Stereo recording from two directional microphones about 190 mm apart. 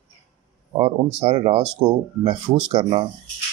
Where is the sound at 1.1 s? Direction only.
30° right (ahead or behind).